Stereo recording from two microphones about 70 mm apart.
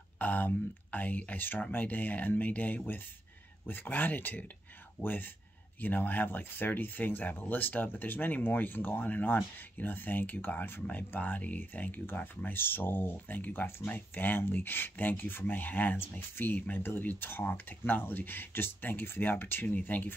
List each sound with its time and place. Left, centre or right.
0.2 s speech: left